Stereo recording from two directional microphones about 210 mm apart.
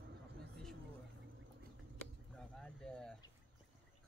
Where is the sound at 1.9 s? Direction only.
5° left (ahead or behind).